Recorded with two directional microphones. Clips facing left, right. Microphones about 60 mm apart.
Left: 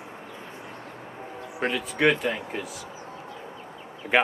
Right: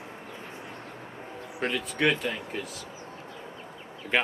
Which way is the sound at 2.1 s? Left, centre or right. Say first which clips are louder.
Left 5 dB; centre.